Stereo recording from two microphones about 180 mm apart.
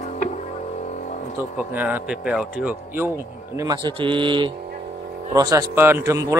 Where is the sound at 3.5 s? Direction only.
20° right (ahead or behind).